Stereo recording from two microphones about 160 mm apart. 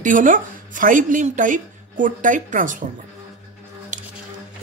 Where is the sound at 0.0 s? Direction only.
55° right (ahead or behind).